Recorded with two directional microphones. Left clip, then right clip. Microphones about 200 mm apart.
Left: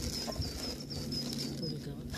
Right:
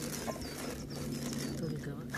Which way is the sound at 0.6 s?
15° right (ahead or behind).